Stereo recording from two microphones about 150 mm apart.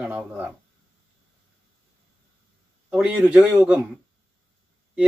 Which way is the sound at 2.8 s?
5° right (ahead or behind).